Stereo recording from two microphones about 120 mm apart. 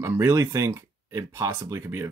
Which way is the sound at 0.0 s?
20° right (ahead or behind).